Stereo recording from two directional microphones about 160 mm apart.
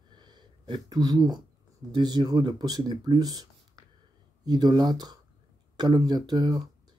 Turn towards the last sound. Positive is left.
turn(degrees=-25)  # may be behind; listen again after turning